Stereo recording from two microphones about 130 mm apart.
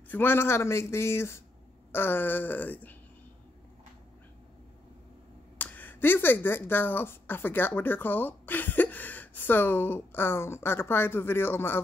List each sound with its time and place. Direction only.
0.1 s speech: 15° left (ahead or behind)
5.6 s speech: 15° left (ahead or behind)